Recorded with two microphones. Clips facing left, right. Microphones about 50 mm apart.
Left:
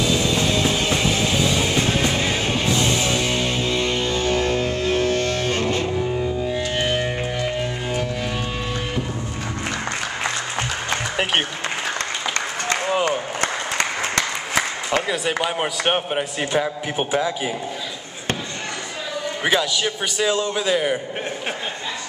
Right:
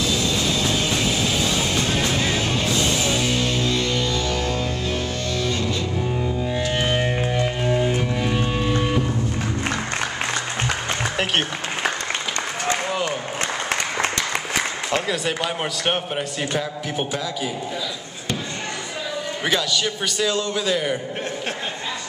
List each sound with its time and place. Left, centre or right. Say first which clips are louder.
0.3 s music: left 2 dB; centre; by 5.9 s left
6.4 s music: even; centre
15.4 s a man's voice: left 2 dB; centre
19.4 s a man's voice: left 2 dB; centre